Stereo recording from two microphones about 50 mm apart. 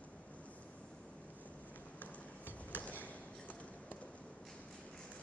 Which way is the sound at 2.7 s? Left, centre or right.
Left.